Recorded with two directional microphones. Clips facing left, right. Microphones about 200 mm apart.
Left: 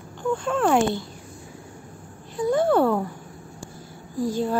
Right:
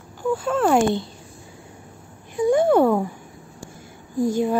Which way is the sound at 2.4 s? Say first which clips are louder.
Right 3 dB; 15° right (ahead or behind).